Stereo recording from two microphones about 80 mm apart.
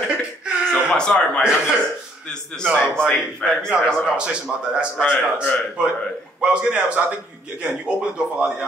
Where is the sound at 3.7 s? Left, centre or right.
Centre.